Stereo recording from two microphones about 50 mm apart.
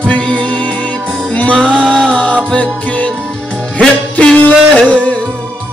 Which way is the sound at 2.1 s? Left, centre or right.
Left.